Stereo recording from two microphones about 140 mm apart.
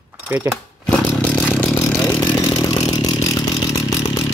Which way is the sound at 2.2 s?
10° left (ahead or behind).